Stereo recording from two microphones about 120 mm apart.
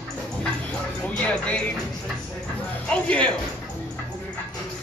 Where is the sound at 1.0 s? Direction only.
10° left (ahead or behind).